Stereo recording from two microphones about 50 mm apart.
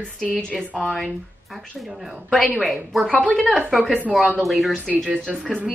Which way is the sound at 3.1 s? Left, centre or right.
Left.